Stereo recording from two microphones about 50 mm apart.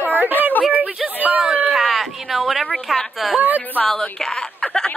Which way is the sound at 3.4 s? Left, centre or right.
Right.